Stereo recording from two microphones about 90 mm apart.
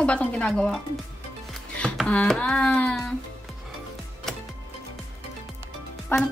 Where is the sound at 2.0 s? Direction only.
15° left (ahead or behind).